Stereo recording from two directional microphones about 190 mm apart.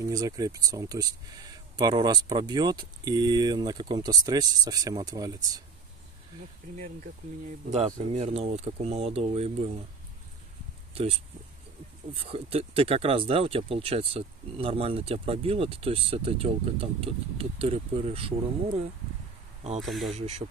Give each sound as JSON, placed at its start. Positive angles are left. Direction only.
{"t": 0.0, "sound": "speech", "side_deg": -20}
{"t": 6.8, "sound": "speech", "side_deg": -45}
{"t": 7.7, "sound": "speech", "side_deg": -35}
{"t": 12.1, "sound": "speech", "side_deg": -30}
{"t": 19.8, "sound": "speech", "side_deg": 0}
{"t": 20.1, "sound": "speech", "side_deg": -35}